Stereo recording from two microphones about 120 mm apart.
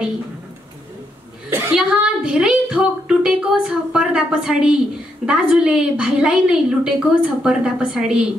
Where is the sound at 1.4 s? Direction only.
20° right (ahead or behind).